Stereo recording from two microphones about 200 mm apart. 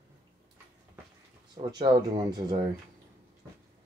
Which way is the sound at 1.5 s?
20° right (ahead or behind).